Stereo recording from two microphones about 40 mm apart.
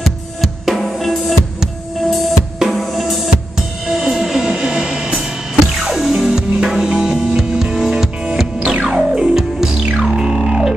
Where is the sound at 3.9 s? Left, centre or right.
Centre.